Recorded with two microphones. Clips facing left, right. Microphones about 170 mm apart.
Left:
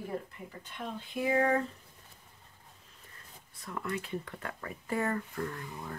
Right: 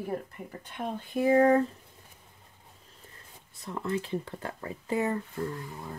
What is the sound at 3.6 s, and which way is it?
Speech, 25° right (ahead or behind).